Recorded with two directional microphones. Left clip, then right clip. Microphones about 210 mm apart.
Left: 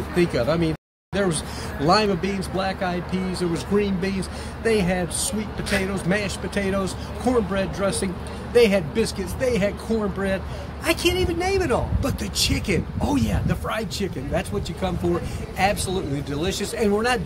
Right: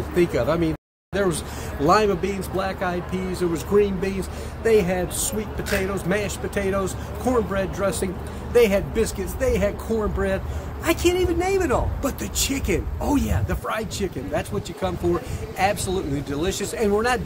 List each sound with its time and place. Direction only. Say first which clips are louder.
0.1 s speech: right 1 dB; centre (ahead or behind)